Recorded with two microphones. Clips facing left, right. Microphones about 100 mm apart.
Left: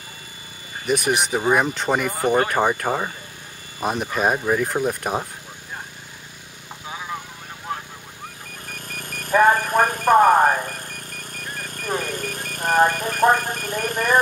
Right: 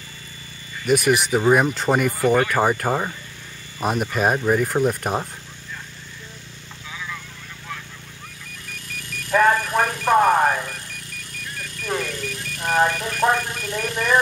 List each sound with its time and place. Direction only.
0.8 s speech: centre (ahead or behind)
2.1 s speech: 35° left (ahead or behind)
2.8 s speech: centre (ahead or behind)
6.9 s vehicle: 35° left (ahead or behind)
8.6 s vehicle: 50° left (ahead or behind)
9.3 s a sound: 15° left (ahead or behind)
9.6 s alarm clock: 50° left (ahead or behind)
10.2 s a sound: 10° left (ahead or behind)
10.7 s vehicle: 50° left (ahead or behind)